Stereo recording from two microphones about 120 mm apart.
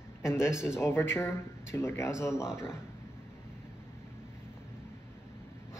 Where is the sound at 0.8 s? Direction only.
20° left (ahead or behind).